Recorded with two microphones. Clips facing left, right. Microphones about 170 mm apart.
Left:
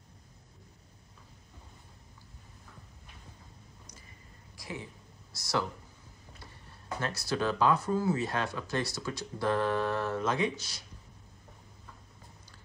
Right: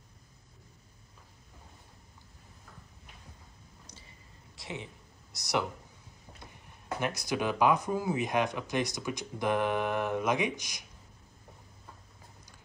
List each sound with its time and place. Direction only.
4.6 s a sound: 25° right (ahead or behind)
5.3 s speech: 20° right (ahead or behind)
7.0 s speech: 15° right (ahead or behind)